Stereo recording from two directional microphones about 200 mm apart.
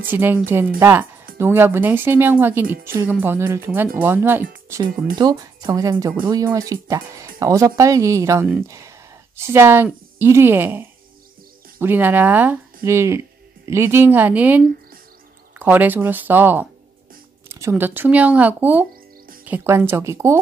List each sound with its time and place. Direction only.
0.0 s speech: 10° right (ahead or behind)
15.6 s speech: 10° right (ahead or behind)